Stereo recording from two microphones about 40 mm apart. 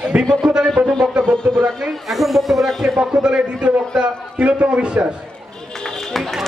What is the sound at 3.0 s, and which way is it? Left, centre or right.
A man's voice, right.